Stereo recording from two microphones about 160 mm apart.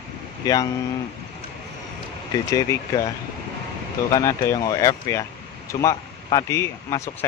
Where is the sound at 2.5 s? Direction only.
20° left (ahead or behind).